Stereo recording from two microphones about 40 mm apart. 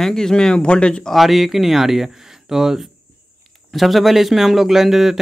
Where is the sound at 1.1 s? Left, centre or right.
Centre.